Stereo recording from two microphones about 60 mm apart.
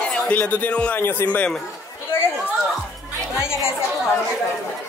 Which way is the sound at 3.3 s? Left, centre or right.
Left.